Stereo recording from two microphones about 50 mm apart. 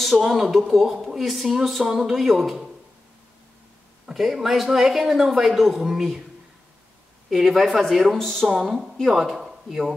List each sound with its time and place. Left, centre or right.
0.2 s speech: centre
4.1 s speech: centre
7.2 s speech: centre
8.5 s speech: centre